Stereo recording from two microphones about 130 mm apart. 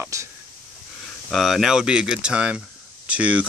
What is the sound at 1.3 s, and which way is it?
Speech, centre (ahead or behind).